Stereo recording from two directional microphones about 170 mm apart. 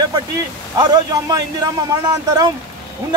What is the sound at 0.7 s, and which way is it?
A man's voice, 25° right (ahead or behind).